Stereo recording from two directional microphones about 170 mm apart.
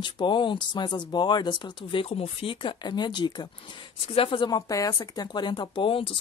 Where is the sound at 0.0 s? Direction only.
30° left (ahead or behind).